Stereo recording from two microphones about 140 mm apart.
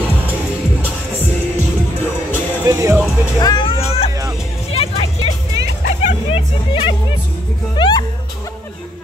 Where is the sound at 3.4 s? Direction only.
30° left (ahead or behind).